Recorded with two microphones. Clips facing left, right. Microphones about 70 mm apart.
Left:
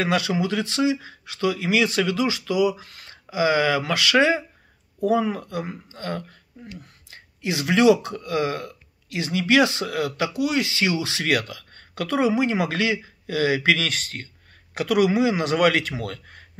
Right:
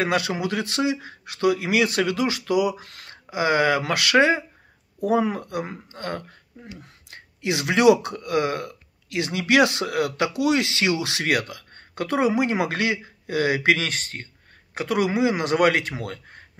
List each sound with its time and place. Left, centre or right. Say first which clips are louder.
0.0 s speech: left 1 dB; right
6.8 s speech: right 2 dB; right
12.2 s speech: even; right
13.7 s speech: left 1 dB; right